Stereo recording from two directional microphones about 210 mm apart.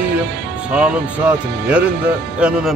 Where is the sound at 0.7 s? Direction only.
5° right (ahead or behind).